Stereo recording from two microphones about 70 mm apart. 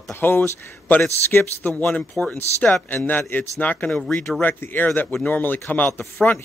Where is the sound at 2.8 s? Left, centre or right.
Left.